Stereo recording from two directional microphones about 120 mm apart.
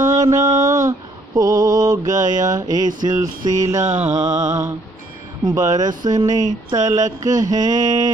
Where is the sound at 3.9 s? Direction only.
70° right (ahead or behind).